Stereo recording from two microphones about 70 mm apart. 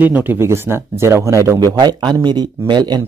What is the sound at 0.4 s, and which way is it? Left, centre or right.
Speech, right.